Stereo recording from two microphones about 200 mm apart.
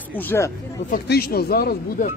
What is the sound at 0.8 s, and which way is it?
Speech, 50° left (ahead or behind).